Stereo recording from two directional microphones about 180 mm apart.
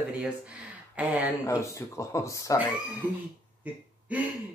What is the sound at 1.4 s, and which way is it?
Speech, 15° left (ahead or behind).